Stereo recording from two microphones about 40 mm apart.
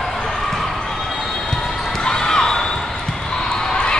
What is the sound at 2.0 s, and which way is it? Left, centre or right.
Basketball bounce, centre.